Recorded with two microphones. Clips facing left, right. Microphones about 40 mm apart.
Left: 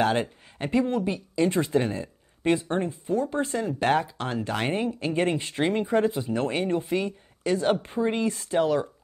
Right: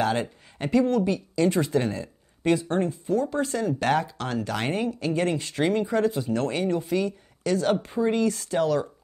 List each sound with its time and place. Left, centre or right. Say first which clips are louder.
0.0 s speech: left 1 dB; left